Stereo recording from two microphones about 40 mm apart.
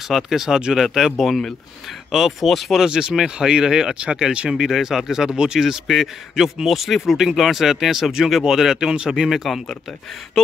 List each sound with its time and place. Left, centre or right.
0.1 s speech: centre
0.8 s speech: centre
2.7 s speech: centre
4.5 s speech: centre
9.3 s speech: centre